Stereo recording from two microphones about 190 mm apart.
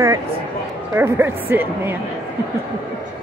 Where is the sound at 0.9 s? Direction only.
10° right (ahead or behind).